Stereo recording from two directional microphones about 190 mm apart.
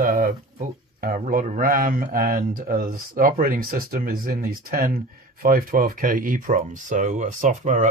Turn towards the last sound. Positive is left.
turn(degrees=-40)  # may be behind; listen again after turning